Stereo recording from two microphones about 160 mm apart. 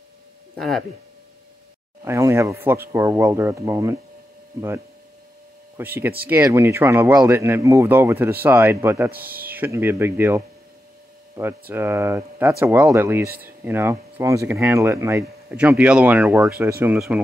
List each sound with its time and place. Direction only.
0.6 s speech: centre (ahead or behind)
2.0 s speech: 15° right (ahead or behind)
9.1 s speech: 65° right (ahead or behind)
9.5 s speech: 15° right (ahead or behind)
15.5 s speech: 10° right (ahead or behind)